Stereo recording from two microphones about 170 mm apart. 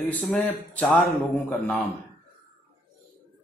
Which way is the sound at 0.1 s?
5° left (ahead or behind).